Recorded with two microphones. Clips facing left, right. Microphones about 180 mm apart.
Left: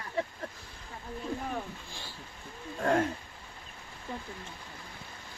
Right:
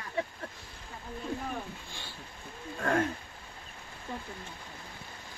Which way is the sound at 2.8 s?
25° left (ahead or behind).